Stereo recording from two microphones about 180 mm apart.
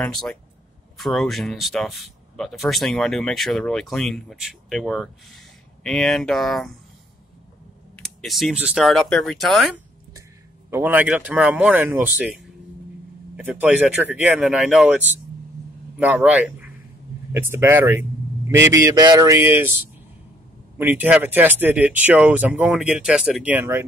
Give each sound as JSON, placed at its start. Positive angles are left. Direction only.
{"t": 0.0, "sound": "speech", "side_deg": 5}
{"t": 7.9, "sound": "speech", "side_deg": 0}
{"t": 10.7, "sound": "speech", "side_deg": -10}
{"t": 13.4, "sound": "speech", "side_deg": -10}
{"t": 20.7, "sound": "speech", "side_deg": -10}